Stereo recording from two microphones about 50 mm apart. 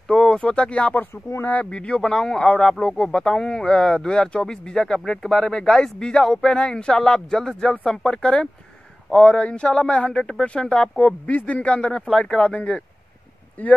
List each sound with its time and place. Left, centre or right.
0.1 s speech: centre
13.6 s speech: left